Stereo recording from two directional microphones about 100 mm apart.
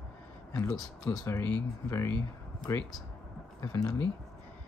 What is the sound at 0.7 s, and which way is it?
Speech, 40° left (ahead or behind).